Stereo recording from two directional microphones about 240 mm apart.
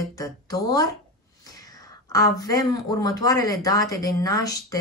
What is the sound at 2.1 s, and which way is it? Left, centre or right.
Speech, centre.